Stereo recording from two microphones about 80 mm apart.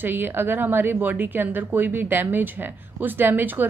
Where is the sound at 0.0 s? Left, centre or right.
Right.